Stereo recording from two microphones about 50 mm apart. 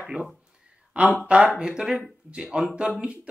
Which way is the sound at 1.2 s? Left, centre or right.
Right.